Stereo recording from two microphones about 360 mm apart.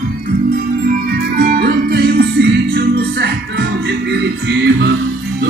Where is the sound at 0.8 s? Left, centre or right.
Right.